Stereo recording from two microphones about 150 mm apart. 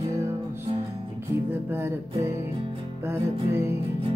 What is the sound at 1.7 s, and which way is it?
Music, 15° right (ahead or behind).